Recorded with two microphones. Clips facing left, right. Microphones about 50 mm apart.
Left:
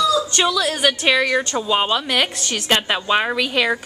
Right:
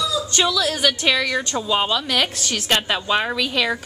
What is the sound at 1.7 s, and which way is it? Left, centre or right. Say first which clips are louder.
A woman's voice: left 1 dB; centre.